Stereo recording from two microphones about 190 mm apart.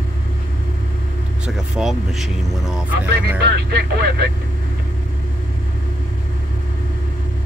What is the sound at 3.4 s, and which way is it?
Speech, 60° right (ahead or behind).